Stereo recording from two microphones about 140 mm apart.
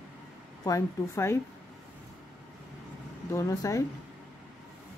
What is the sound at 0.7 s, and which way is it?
Speech, 20° left (ahead or behind).